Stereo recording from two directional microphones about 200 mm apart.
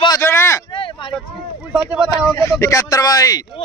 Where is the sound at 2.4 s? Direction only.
15° left (ahead or behind).